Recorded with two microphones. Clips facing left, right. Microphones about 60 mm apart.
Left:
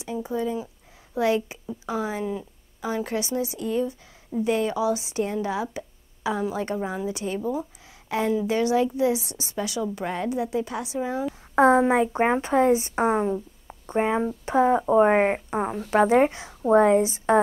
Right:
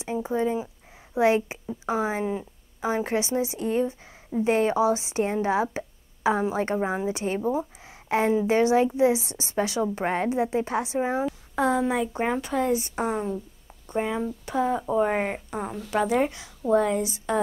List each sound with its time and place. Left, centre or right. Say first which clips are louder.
0.0 s a woman's voice: right 2 dB; right
11.5 s a woman's voice: left 6 dB; left